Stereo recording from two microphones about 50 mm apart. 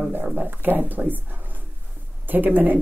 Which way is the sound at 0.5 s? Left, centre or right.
Right.